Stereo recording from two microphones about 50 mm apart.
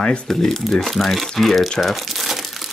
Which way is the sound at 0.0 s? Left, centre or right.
Left.